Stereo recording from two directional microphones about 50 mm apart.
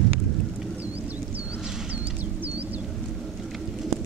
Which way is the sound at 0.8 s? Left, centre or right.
Right.